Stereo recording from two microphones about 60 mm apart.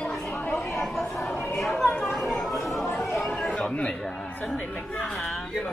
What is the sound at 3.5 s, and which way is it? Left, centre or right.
Chatter, centre.